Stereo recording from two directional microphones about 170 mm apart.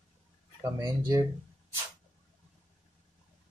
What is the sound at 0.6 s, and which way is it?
Speech, 20° right (ahead or behind).